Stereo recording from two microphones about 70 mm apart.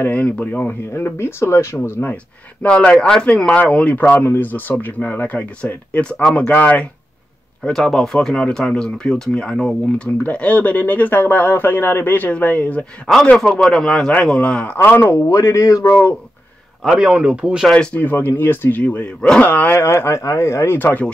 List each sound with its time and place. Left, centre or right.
0.1 s speech: left
0.9 s speech: left
1.8 s speech: left
2.6 s speech: centre
7.7 s speech: centre
10.2 s speech: left
13.0 s a man's voice: centre
14.8 s speech: left
15.2 s speech: left
17.0 s speech: centre
18.0 s speech: left
19.8 s speech: left